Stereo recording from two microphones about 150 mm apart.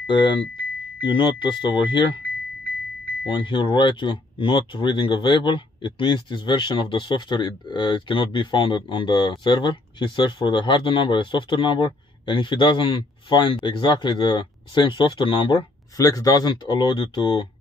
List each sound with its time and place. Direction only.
0.0 s speech: 30° left (ahead or behind)
3.3 s speech: 35° left (ahead or behind)
16.0 s speech: 25° left (ahead or behind)